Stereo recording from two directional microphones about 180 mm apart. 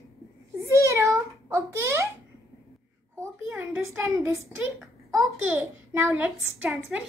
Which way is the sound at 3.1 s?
15° right (ahead or behind).